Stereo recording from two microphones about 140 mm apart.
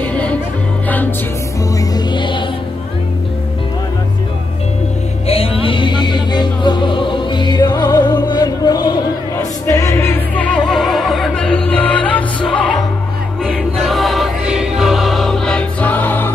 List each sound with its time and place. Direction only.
0.0 s music: 10° left (ahead or behind)
1.8 s music: 30° left (ahead or behind)
5.3 s music: 45° left (ahead or behind); by 12.8 s 5° left (ahead or behind)
13.7 s choir: centre (ahead or behind)